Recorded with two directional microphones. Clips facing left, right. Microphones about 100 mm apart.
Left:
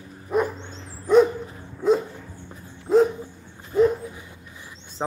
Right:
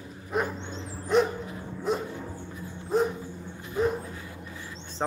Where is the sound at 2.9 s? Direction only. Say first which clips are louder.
Left 8 dB; 90° left.